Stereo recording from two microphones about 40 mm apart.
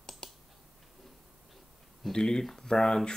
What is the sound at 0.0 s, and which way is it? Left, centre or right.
Computer keyboard, centre.